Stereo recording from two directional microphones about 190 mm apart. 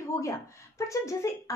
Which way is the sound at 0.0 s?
15° left (ahead or behind).